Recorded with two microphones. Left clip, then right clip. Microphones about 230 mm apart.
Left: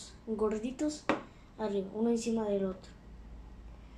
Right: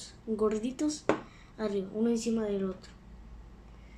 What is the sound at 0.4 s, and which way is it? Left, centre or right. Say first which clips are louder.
Speech: right 3 dB; right.